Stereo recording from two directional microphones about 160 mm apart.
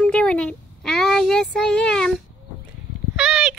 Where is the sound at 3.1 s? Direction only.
5° right (ahead or behind).